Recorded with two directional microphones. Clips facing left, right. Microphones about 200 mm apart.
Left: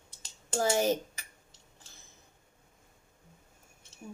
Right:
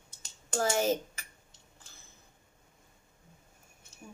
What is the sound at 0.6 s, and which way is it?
Speech, 15° left (ahead or behind).